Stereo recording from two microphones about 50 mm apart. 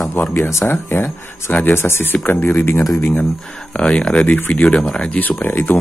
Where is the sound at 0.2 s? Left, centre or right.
Left.